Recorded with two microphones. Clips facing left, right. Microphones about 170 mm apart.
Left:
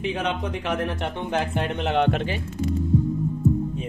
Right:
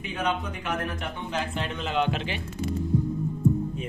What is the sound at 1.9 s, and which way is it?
Speech, 65° left (ahead or behind).